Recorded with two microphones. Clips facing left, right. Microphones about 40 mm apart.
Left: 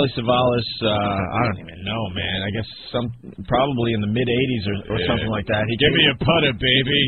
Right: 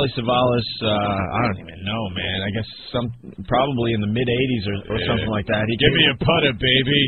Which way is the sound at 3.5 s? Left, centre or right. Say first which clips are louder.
Even; right.